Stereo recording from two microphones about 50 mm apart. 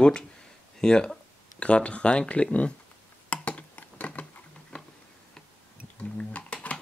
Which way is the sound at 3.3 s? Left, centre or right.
Left.